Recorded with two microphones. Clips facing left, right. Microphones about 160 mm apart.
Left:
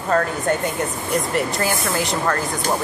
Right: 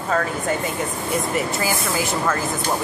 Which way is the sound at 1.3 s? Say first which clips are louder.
Left 1 dB; 5° right (ahead or behind).